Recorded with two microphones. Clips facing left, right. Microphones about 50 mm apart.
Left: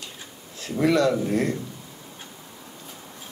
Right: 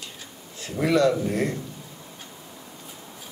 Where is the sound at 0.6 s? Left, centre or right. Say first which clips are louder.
Even; centre.